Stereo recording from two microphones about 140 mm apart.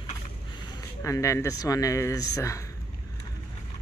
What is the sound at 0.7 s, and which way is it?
Speech, 25° left (ahead or behind).